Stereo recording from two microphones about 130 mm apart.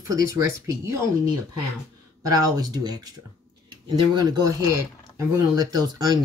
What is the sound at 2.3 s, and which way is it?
Speech, 30° right (ahead or behind).